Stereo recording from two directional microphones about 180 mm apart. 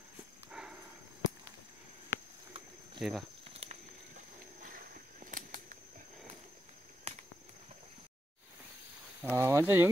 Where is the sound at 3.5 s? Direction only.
35° right (ahead or behind).